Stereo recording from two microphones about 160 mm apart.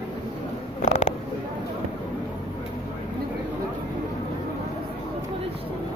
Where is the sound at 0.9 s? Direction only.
50° left (ahead or behind).